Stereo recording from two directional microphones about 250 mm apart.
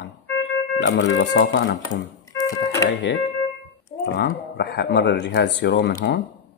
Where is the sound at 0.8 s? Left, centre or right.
Left.